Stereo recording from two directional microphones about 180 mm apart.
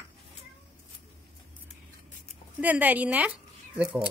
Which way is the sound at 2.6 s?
10° right (ahead or behind).